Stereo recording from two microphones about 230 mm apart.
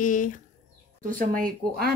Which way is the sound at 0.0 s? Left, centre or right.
Left.